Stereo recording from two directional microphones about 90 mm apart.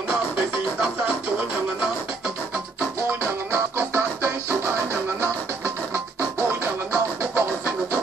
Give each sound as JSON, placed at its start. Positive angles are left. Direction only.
{"t": 3.7, "sound": "music", "side_deg": -25}
{"t": 6.9, "sound": "music", "side_deg": -25}